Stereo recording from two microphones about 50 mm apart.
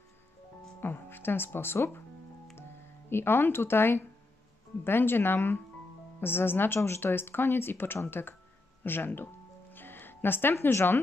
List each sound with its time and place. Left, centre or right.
0.7 s speech: left
3.1 s speech: left
8.8 s music: left
10.5 s speech: left